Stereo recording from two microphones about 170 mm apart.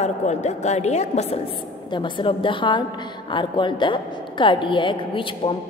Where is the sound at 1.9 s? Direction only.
25° left (ahead or behind).